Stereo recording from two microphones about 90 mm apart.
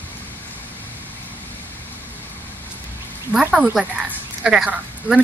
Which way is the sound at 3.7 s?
5° right (ahead or behind).